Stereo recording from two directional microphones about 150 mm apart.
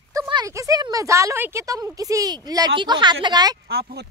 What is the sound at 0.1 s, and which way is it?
Speech, 25° right (ahead or behind).